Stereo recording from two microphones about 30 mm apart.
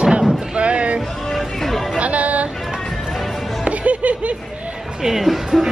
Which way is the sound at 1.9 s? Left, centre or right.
Right.